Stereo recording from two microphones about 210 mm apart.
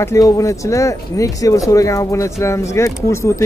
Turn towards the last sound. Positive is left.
turn(degrees=15)  # may be behind; listen again after turning